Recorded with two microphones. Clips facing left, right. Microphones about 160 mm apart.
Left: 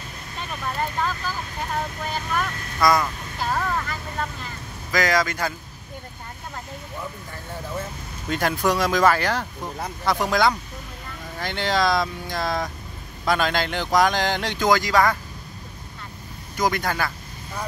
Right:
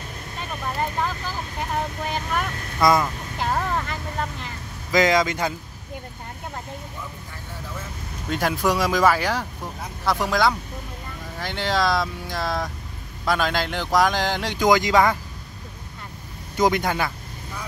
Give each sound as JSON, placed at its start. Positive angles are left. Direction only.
{"t": 2.0, "sound": "speech", "side_deg": -20}
{"t": 3.3, "sound": "vehicle", "side_deg": -20}
{"t": 4.9, "sound": "speech", "side_deg": -20}
{"t": 8.3, "sound": "speech", "side_deg": -5}
{"t": 16.5, "sound": "speech", "side_deg": -20}